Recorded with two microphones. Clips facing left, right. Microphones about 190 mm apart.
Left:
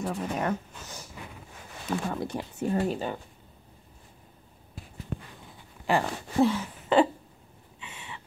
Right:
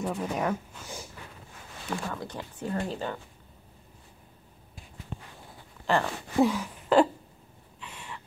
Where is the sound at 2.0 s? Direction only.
20° left (ahead or behind).